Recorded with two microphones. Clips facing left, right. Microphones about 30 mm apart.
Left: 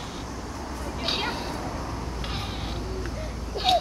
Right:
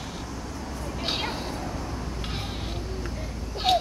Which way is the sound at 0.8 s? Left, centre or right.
Centre.